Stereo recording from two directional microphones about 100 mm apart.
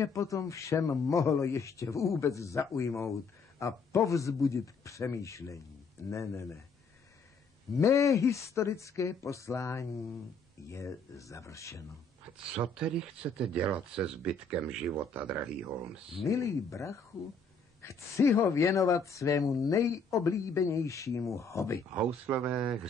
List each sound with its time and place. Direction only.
0.0 s speech: 30° left (ahead or behind)
7.8 s speech: 30° left (ahead or behind)
12.5 s speech: 5° right (ahead or behind)
16.3 s speech: 30° left (ahead or behind)
21.9 s speech: 15° right (ahead or behind)